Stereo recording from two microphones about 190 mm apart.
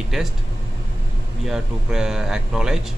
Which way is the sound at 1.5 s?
5° right (ahead or behind).